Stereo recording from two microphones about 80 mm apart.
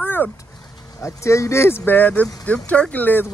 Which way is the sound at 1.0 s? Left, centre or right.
Left.